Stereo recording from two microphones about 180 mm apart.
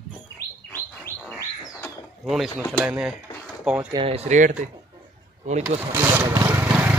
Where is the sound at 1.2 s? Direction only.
15° left (ahead or behind).